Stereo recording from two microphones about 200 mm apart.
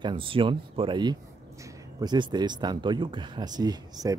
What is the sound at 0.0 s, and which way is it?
Speech, 25° right (ahead or behind).